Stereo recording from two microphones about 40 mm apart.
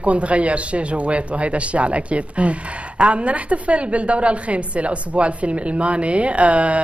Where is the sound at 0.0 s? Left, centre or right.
Right.